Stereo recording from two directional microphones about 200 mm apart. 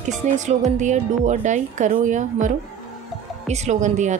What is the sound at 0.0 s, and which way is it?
Speech, 35° right (ahead or behind).